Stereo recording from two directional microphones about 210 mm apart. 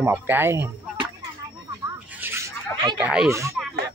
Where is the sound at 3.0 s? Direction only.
5° right (ahead or behind).